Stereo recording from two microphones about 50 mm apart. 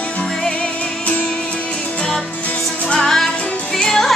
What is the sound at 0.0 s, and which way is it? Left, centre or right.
Music, left.